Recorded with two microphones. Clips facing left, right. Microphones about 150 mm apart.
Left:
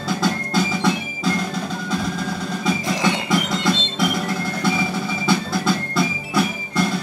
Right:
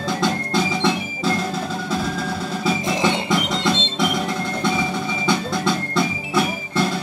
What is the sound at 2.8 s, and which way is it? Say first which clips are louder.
Music: right 2 dB; 25° right (ahead or behind).